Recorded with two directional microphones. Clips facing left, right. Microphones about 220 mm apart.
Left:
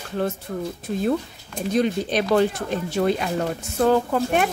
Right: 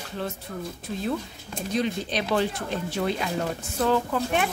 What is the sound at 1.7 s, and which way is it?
Speech, 50° left (ahead or behind).